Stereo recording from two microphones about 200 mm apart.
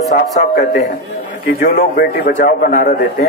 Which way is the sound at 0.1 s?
45° left (ahead or behind).